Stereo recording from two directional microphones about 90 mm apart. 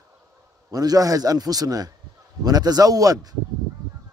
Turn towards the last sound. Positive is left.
turn(degrees=-45)  # may be behind; listen again after turning